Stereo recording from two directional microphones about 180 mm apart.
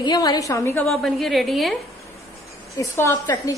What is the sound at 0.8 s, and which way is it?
Speech, centre (ahead or behind).